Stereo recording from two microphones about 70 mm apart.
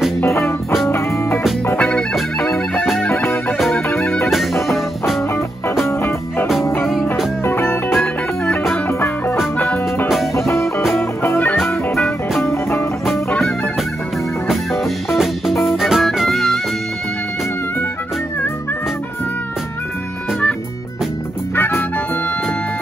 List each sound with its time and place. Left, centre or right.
0.2 s music: left
1.8 s music: centre
3.9 s music: centre
6.8 s music: centre
7.4 s music: left
10.9 s music: left
12.0 s music: centre
14.5 s music: centre
21.5 s music: left